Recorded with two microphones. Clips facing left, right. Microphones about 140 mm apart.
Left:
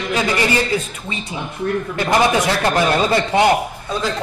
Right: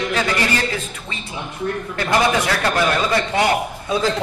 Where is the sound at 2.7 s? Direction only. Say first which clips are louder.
Left 2 dB; 30° left (ahead or behind).